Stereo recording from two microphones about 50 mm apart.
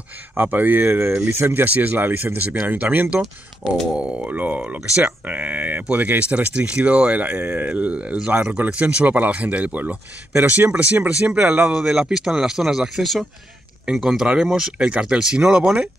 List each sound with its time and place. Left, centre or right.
0.3 s speech: right
0.8 s speech: right
1.6 s speech: right
3.9 s speech: right
4.3 s speech: right
11.7 s speech: centre
13.0 s speech: centre